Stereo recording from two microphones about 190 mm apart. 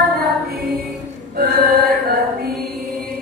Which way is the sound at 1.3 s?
55° right (ahead or behind).